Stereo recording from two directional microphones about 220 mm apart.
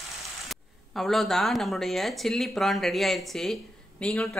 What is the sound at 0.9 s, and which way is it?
A woman's voice, centre (ahead or behind).